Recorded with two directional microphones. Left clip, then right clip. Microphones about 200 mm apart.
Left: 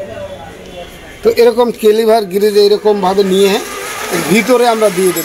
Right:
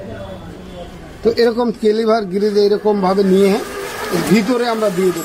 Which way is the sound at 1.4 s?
5° left (ahead or behind).